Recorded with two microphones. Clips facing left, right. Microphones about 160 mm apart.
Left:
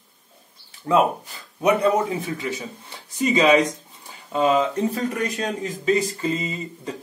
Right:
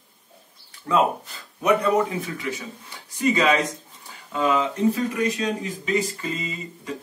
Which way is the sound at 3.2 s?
20° left (ahead or behind).